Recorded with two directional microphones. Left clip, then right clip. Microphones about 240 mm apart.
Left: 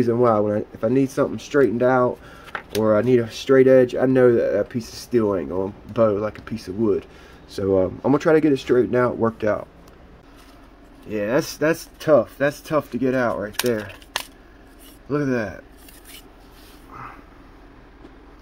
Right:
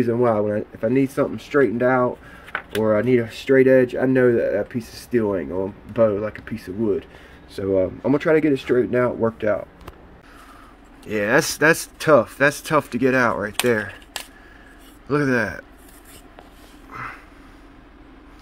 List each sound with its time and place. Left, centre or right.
0.0 s speech: centre
11.1 s speech: centre
15.0 s speech: centre
16.9 s a sound: centre